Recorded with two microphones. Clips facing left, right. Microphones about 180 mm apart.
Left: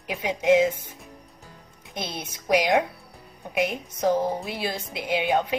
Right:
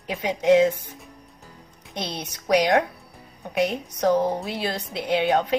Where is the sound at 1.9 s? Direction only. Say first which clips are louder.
Right 2 dB; 5° left (ahead or behind).